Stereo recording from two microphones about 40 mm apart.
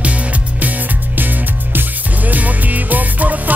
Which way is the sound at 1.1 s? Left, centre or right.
Right.